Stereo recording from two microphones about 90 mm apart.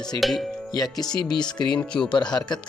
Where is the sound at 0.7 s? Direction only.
45° left (ahead or behind).